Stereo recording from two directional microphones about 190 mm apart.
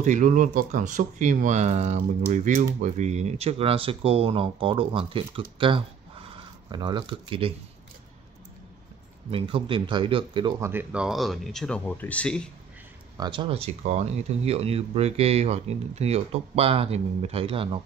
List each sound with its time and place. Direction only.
0.0 s speech: 40° right (ahead or behind)
9.3 s speech: 25° right (ahead or behind)
10.6 s speech: 10° right (ahead or behind); by 12.4 s 5° left (ahead or behind)
13.2 s speech: 25° right (ahead or behind)